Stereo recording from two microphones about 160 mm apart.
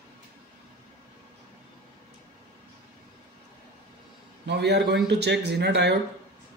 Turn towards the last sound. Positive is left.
turn(degrees=-90)